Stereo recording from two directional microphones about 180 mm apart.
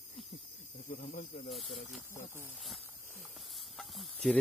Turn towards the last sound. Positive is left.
turn(degrees=0)  # may be behind; listen again after turning